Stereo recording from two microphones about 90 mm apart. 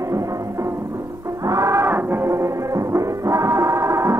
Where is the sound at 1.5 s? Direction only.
35° right (ahead or behind).